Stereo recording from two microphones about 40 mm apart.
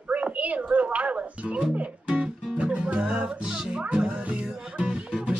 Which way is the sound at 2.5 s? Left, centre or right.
Right.